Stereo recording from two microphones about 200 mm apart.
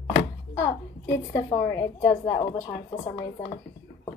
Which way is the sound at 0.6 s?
15° left (ahead or behind).